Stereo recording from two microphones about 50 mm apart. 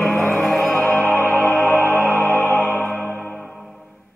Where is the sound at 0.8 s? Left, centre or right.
Left.